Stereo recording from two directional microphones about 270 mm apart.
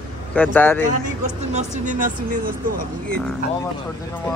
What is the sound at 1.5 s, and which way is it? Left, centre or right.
Speech, right.